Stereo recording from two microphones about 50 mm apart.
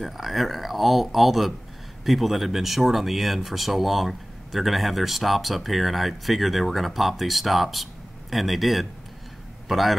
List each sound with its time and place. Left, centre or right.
0.0 s a man's voice: centre